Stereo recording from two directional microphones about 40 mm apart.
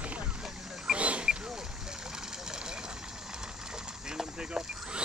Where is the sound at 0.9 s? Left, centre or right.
Right; by 4.8 s centre.